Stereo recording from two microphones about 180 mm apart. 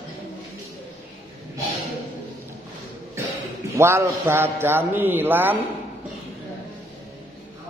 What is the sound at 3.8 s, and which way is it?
Mantra, 15° right (ahead or behind).